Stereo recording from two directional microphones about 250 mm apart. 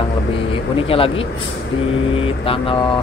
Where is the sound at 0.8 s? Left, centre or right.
Left.